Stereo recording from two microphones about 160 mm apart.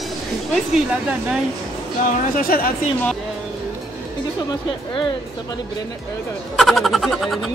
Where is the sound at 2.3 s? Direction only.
65° left (ahead or behind).